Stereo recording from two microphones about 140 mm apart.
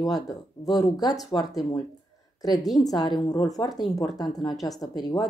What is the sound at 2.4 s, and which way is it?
A woman's voice, 30° left (ahead or behind).